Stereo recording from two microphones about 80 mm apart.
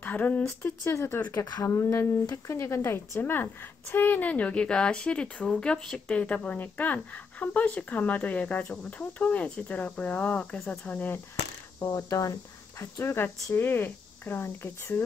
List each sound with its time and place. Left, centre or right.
0.0 s a sound: left
0.4 s speech: left
11.8 s speech: left
13.0 s speech: left